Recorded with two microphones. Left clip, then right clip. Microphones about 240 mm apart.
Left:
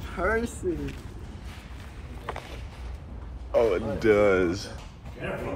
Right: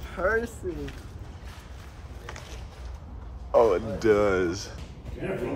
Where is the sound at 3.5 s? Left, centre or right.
Right.